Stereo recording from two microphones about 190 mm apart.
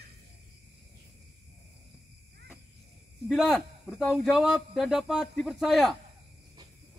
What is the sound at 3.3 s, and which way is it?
Speech, centre (ahead or behind).